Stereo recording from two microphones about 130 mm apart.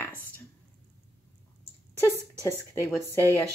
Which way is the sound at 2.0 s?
20° right (ahead or behind).